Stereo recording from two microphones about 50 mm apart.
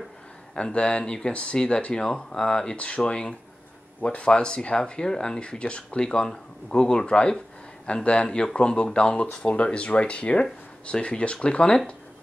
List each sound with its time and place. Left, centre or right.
0.6 s speech: centre